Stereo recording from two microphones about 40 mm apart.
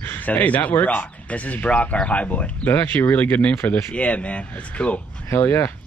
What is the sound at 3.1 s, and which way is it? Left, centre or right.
Speech, left.